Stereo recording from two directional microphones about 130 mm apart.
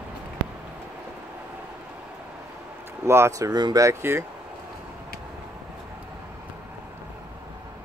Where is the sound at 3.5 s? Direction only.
30° right (ahead or behind).